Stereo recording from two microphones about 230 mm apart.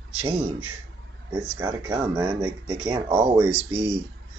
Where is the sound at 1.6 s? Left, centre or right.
Centre.